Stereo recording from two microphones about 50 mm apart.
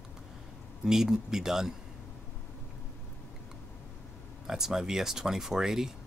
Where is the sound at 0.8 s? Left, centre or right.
Centre.